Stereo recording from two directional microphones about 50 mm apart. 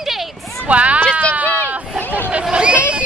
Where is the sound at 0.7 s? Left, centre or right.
Right.